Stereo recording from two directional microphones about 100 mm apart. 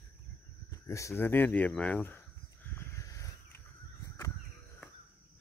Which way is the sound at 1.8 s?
15° left (ahead or behind).